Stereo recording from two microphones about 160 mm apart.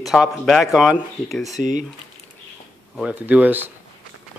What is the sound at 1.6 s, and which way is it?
Speech, 50° right (ahead or behind).